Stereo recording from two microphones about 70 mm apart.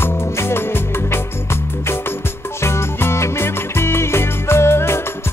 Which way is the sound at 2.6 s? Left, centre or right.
Left.